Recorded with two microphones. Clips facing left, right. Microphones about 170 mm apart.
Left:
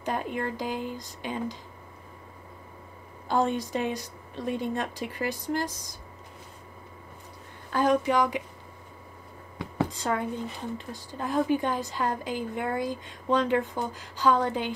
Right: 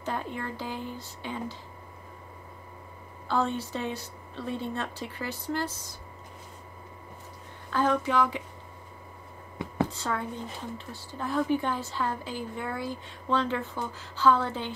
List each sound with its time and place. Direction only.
0.0 s a woman's voice: 15° left (ahead or behind)
3.3 s a woman's voice: 15° left (ahead or behind)
7.7 s a woman's voice: 15° left (ahead or behind)
9.8 s a woman's voice: 15° left (ahead or behind)